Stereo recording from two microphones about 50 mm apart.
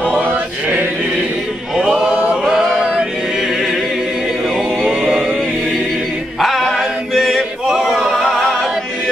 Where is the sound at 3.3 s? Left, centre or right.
Centre.